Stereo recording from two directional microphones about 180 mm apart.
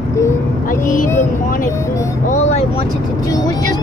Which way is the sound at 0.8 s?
45° left (ahead or behind).